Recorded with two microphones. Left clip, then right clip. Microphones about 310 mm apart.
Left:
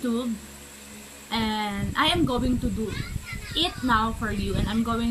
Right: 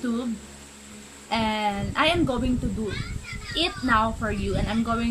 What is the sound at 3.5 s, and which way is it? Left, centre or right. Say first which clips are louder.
Speech: right 1 dB; centre.